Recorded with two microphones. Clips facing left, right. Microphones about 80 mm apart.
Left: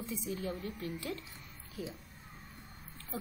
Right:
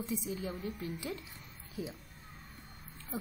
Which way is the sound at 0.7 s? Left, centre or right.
Centre.